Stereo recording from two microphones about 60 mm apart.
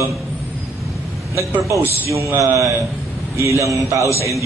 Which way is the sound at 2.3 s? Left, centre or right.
Right.